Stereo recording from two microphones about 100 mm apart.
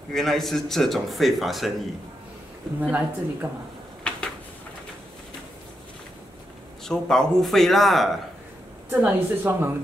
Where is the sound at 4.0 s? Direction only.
10° left (ahead or behind).